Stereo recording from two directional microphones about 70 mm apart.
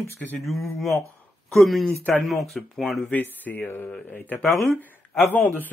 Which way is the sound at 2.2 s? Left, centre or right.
Centre.